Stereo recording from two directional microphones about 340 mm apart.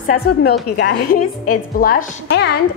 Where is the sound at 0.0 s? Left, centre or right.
Left.